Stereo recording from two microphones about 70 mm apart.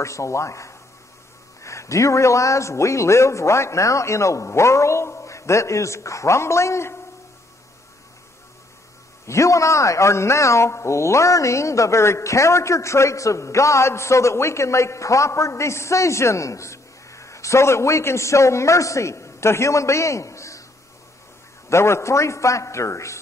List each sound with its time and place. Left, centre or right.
0.0 s a man's voice: left
9.2 s a man's voice: left
21.6 s a man's voice: left